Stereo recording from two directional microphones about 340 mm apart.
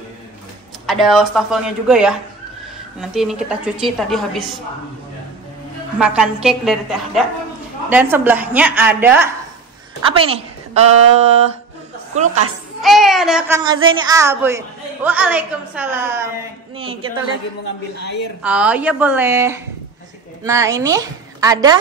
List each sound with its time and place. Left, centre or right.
0.8 s a woman's voice: centre
5.9 s a woman's voice: centre
10.0 s a woman's voice: centre
12.8 s a woman's voice: centre
17.9 s speech: left
18.4 s a woman's voice: centre